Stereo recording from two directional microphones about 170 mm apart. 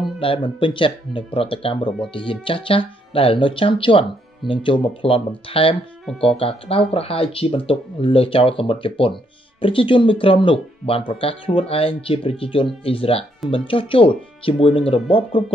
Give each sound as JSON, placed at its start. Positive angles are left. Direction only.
{"t": 0.2, "sound": "speech", "side_deg": 30}